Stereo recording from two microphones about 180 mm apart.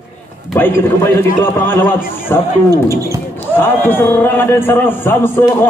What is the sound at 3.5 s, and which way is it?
A man's voice, 10° left (ahead or behind).